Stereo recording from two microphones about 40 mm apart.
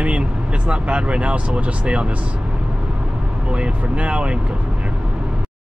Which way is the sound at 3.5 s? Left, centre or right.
Right.